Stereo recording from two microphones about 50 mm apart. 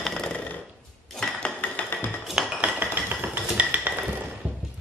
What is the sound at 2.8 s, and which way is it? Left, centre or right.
Chink, right.